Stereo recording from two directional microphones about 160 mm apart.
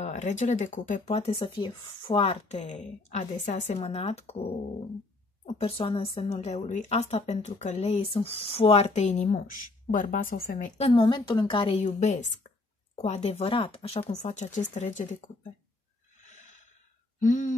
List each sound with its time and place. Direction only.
0.0 s speech: 50° left (ahead or behind)
1.1 s a woman's voice: 35° left (ahead or behind)
9.3 s speech: 60° left (ahead or behind)
10.8 s a woman's voice: 35° left (ahead or behind); by 15.3 s 50° left (ahead or behind)
16.2 s snort: 50° left (ahead or behind)
17.2 s speech: 50° left (ahead or behind)